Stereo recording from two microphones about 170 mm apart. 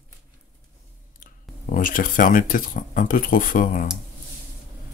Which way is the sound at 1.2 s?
50° left (ahead or behind).